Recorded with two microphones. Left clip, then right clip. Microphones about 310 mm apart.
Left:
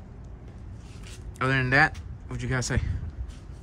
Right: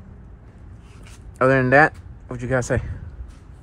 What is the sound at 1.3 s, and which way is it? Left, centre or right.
Speech, centre.